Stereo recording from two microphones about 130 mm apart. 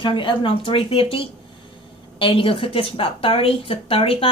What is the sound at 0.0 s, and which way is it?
A woman's voice, 40° left (ahead or behind).